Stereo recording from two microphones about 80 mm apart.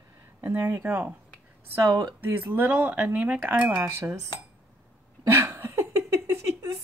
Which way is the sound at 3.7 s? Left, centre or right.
Right.